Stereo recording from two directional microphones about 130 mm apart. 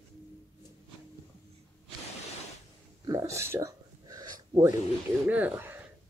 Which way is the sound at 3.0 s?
30° right (ahead or behind).